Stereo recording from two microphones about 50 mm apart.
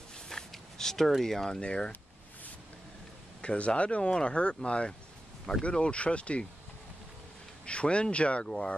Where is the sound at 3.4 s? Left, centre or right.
Left.